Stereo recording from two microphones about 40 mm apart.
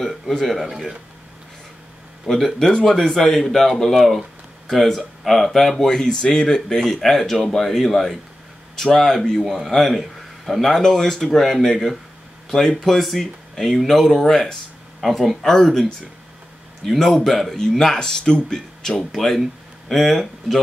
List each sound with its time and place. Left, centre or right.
0.3 s speech: centre
2.3 s speech: centre
6.8 s a man's voice: centre
19.1 s speech: centre